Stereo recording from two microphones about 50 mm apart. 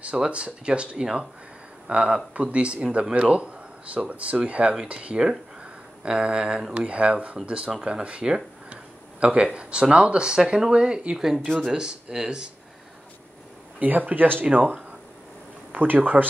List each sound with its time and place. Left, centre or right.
0.1 s speech: right
13.7 s speech: right